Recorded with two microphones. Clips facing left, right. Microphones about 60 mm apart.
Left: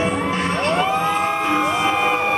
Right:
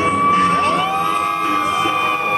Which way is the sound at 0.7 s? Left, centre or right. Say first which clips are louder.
Right 1 dB; centre.